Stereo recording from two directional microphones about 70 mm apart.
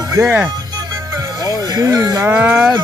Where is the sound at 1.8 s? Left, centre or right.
Right.